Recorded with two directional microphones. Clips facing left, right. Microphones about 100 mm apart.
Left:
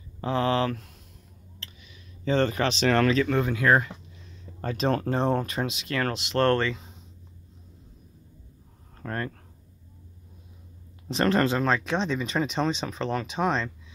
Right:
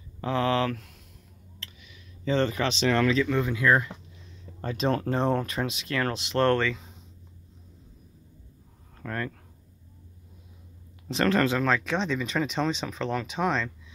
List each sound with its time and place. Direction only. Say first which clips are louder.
0.2 s speech: left 1 dB; 30° left (ahead or behind); by 3.8 s 60° left (ahead or behind)
4.6 s speech: left 1 dB; 45° left (ahead or behind)
5.0 s speech: left 1 dB; 25° left (ahead or behind)
6.0 s speech: left 1 dB; 15° right (ahead or behind)
6.5 s speech: even; 20° left (ahead or behind)
9.0 s speech: left 1 dB; 35° left (ahead or behind)
11.1 s speech: left 1 dB; 25° left (ahead or behind)